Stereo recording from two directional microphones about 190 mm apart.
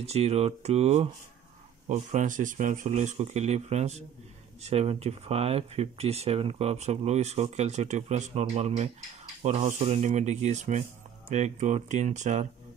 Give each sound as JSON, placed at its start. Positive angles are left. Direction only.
{"t": 0.0, "sound": "speech", "side_deg": -35}